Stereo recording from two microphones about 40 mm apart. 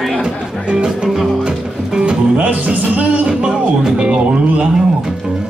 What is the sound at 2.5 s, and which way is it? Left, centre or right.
Music, right.